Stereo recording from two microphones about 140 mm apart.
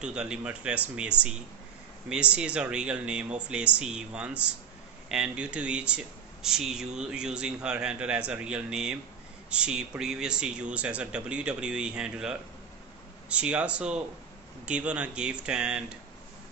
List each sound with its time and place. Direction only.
0.0 s speech: 5° right (ahead or behind)